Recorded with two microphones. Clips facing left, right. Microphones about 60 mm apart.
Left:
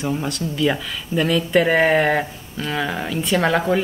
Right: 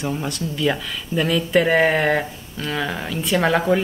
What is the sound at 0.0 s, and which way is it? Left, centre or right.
Speech, centre.